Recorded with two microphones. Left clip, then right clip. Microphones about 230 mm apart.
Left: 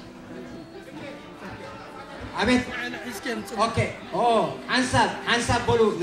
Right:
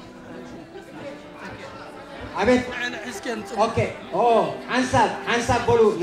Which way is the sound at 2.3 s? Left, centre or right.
Centre.